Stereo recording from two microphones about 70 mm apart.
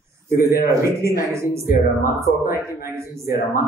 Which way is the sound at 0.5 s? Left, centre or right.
Right.